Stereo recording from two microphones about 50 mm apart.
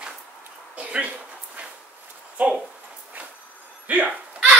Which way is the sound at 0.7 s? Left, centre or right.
Right.